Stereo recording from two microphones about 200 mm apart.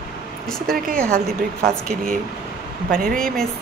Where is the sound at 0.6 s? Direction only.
45° right (ahead or behind).